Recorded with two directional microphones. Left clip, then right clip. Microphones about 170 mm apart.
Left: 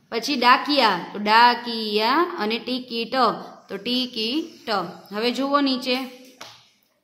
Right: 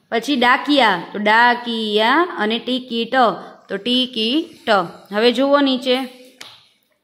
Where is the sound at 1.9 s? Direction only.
25° right (ahead or behind).